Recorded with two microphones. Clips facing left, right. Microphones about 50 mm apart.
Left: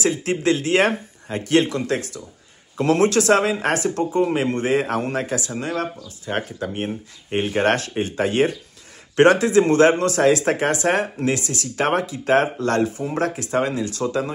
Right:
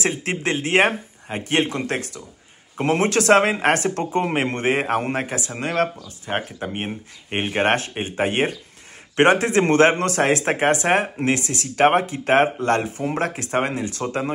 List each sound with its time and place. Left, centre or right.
0.0 s speech: right
3.1 s speech: right
6.2 s speech: right